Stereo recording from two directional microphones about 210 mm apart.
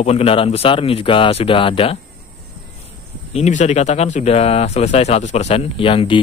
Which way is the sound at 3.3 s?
35° left (ahead or behind).